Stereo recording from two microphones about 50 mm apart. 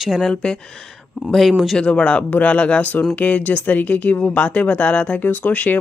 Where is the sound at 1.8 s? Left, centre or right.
Left.